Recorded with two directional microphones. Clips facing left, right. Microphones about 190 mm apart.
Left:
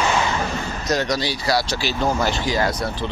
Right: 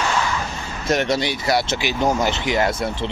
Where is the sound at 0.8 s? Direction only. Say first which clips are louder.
Right 3 dB; 25° right (ahead or behind).